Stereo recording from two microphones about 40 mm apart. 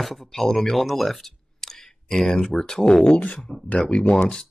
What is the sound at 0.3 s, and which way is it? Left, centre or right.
Speech, centre.